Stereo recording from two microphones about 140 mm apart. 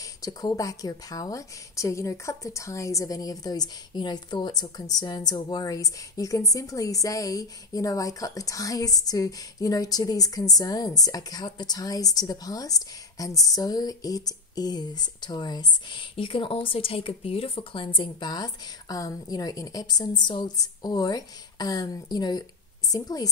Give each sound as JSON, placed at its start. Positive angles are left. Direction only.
{"t": 0.0, "sound": "a woman's voice", "side_deg": 25}